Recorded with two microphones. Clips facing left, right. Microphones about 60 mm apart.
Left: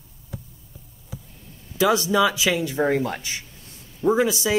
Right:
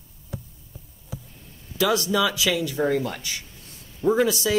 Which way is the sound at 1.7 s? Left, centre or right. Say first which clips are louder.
Left 3 dB; left.